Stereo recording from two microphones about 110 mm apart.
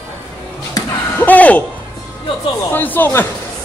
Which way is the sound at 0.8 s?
35° left (ahead or behind).